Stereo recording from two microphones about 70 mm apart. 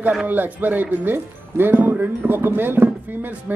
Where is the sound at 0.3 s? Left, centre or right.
Right.